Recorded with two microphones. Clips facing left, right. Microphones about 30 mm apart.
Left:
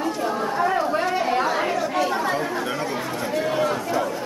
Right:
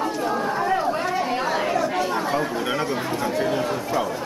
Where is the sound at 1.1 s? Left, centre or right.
Centre.